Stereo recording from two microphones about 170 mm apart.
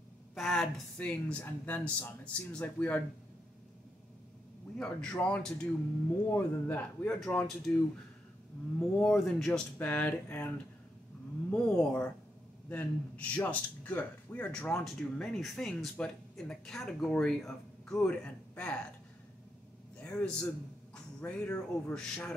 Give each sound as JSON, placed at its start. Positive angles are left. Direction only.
{"t": 0.3, "sound": "speech", "side_deg": 0}
{"t": 4.7, "sound": "a man's voice", "side_deg": 5}
{"t": 8.7, "sound": "speech", "side_deg": 5}
{"t": 11.5, "sound": "a man's voice", "side_deg": 5}
{"t": 20.0, "sound": "a man's voice", "side_deg": 5}